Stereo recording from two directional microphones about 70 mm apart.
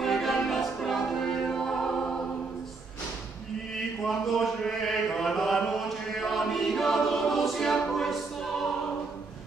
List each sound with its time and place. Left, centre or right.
0.0 s music: centre
4.0 s mantra: centre
7.9 s a capella: centre